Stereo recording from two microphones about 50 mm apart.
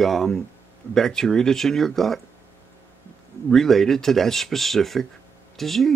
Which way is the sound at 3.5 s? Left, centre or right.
Centre.